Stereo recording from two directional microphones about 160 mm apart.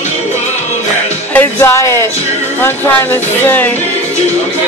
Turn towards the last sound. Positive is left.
turn(degrees=10)  # may be behind; listen again after turning